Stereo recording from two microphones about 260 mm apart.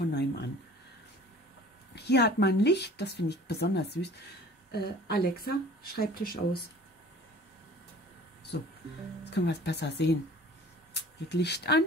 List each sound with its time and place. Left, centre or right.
0.0 s a sound: left
2.0 s speech: left
8.5 s speech: left